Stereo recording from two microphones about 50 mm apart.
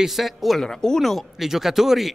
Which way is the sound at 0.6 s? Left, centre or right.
Centre.